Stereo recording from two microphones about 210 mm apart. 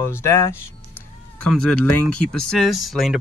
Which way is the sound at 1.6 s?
5° left (ahead or behind).